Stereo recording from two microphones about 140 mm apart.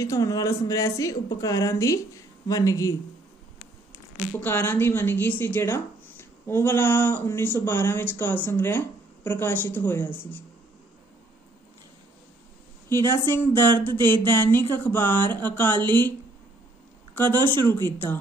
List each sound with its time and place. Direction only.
0.0 s speech: 25° left (ahead or behind)
4.4 s speech: 15° left (ahead or behind)
13.0 s speech: 15° left (ahead or behind)
15.7 s speech: 30° right (ahead or behind)
17.1 s speech: 15° left (ahead or behind)